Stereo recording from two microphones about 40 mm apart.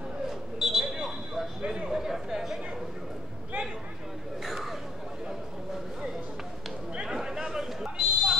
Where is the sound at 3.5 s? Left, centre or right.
Right.